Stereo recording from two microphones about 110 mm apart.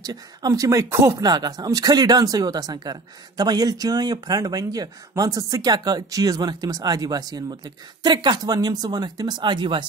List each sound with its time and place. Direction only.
0.0 s speech: 35° right (ahead or behind)
1.2 s speech: 40° right (ahead or behind)